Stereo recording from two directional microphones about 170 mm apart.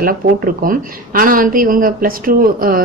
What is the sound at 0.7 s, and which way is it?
Speech, 55° right (ahead or behind).